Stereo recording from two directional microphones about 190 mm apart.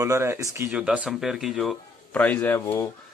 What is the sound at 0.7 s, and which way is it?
Speech, 5° right (ahead or behind).